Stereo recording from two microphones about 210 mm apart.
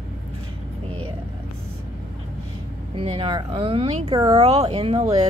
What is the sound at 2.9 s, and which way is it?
Speech, 25° right (ahead or behind).